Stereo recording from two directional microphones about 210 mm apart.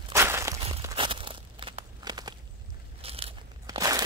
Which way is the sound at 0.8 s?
25° right (ahead or behind).